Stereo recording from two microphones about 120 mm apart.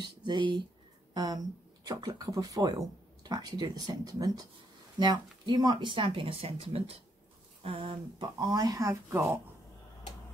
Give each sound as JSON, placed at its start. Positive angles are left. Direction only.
{"t": 0.0, "sound": "speech", "side_deg": -40}